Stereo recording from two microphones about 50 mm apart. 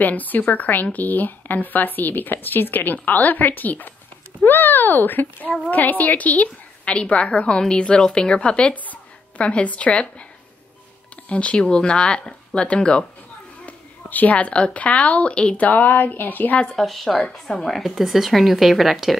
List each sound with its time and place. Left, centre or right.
0.0 s a woman's voice: left
11.2 s a woman's voice: left
16.7 s a woman's voice: centre